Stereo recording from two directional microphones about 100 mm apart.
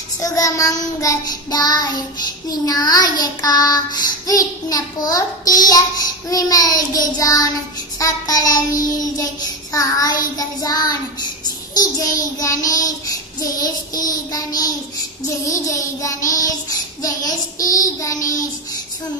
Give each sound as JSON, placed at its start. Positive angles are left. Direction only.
{"t": 0.2, "sound": "child singing", "side_deg": 35}
{"t": 16.0, "sound": "child singing", "side_deg": 35}